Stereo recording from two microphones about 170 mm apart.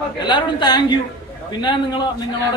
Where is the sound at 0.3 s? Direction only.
25° left (ahead or behind).